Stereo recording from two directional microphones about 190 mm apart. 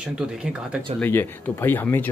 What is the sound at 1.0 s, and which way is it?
Speech, 10° left (ahead or behind).